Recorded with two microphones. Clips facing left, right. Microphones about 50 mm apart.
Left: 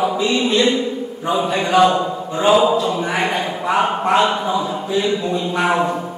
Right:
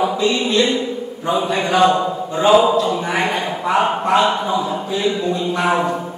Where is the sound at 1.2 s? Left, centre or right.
Centre.